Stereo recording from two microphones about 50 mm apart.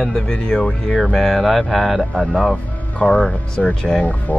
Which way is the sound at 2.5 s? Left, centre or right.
Left.